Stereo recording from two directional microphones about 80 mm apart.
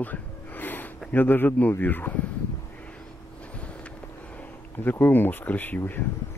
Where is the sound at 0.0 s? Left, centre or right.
Left.